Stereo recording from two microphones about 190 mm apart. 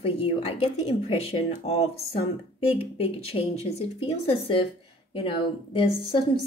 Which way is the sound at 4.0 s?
30° left (ahead or behind).